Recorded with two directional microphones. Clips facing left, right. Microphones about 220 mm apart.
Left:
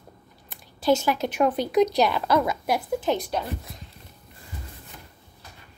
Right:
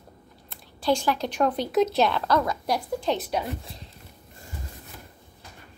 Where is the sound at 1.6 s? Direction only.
Centre (ahead or behind).